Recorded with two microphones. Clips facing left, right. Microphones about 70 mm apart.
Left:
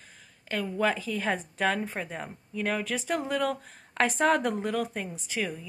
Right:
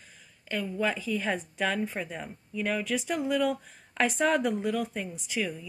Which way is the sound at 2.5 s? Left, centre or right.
Left.